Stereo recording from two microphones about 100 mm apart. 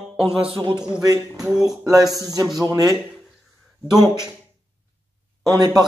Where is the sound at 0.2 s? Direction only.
70° right (ahead or behind).